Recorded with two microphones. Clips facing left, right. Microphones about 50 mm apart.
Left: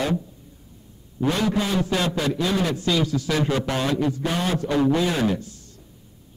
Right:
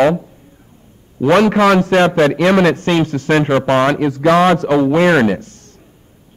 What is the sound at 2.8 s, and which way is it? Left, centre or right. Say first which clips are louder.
Speech: right 7 dB; right.